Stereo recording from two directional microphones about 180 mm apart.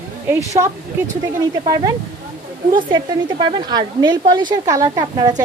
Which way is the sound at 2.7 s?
25° right (ahead or behind).